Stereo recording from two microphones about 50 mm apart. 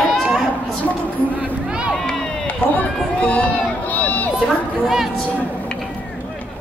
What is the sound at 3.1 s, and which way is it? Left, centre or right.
Run, left.